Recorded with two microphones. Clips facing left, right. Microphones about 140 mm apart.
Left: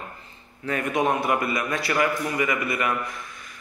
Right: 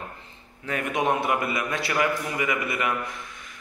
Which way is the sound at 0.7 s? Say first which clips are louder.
Left 1 dB; 15° right (ahead or behind).